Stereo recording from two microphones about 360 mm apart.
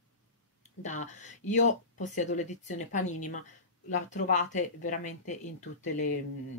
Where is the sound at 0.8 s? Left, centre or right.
Centre.